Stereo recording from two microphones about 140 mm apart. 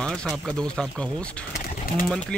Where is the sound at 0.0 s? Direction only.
5° left (ahead or behind).